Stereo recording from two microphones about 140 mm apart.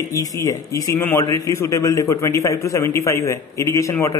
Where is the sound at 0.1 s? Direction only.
25° left (ahead or behind).